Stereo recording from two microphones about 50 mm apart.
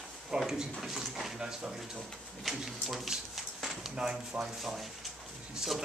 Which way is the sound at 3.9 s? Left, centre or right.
Centre.